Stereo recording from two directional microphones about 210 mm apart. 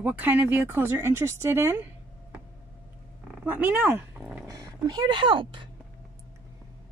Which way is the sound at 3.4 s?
5° right (ahead or behind).